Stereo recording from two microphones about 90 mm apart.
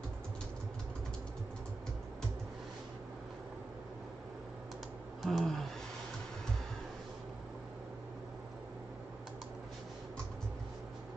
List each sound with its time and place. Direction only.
5.2 s speech: centre (ahead or behind)